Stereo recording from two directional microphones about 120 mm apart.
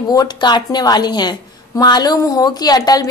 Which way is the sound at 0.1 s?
35° left (ahead or behind).